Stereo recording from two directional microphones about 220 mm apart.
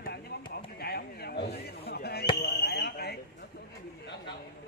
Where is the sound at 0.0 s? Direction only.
50° left (ahead or behind).